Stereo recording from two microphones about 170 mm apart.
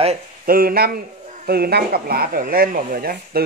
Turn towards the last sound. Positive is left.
turn(degrees=-60)  # may be behind; listen again after turning